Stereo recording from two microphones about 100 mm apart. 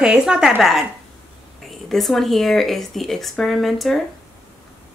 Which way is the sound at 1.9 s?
Centre (ahead or behind).